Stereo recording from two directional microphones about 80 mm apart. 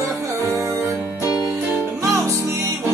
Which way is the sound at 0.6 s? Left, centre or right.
Right.